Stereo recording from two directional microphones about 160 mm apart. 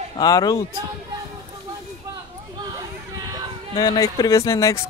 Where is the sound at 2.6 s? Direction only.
25° right (ahead or behind).